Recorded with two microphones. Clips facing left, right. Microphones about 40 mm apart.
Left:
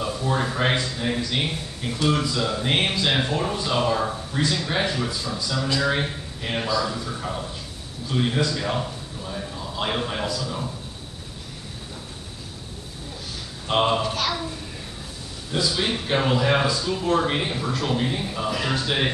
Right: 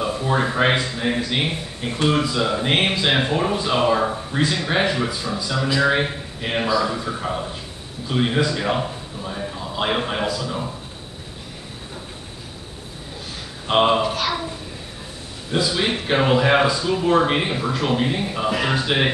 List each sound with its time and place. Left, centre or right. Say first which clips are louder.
0.0 s a man's voice: right 4 dB; right
13.7 s a child's voice: right 4 dB; centre
15.5 s speech: right 3 dB; right